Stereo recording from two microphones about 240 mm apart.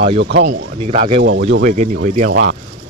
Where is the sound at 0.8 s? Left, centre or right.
Right.